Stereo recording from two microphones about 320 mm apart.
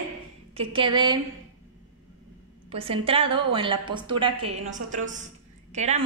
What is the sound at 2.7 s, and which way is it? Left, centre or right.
A woman's voice, centre.